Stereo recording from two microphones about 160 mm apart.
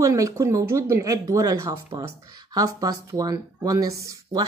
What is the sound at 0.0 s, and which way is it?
Speech, 20° right (ahead or behind).